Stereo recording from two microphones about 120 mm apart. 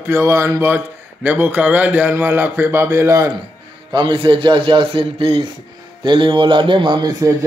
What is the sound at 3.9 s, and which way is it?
A man's voice, 45° right (ahead or behind).